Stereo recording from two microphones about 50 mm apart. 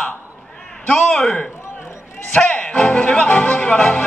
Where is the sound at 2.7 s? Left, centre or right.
Left.